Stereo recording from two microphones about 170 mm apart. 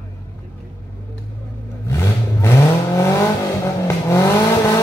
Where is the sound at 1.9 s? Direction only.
15° left (ahead or behind).